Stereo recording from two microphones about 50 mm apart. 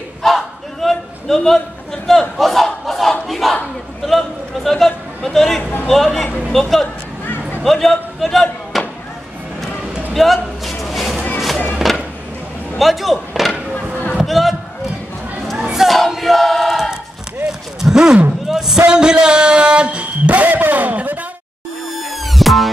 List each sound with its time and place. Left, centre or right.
0.2 s a sound: centre
2.0 s battle cry: centre
3.5 s a man's voice: centre
5.6 s a man's voice: left
5.9 s battle cry: centre
8.2 s chop: centre
10.1 s a sound: centre
11.8 s skateboard: centre
12.7 s a man's voice: centre
15.7 s a sound: centre
16.1 s choir: centre
17.5 s a sound: centre
18.9 s speech: centre
22.0 s music: centre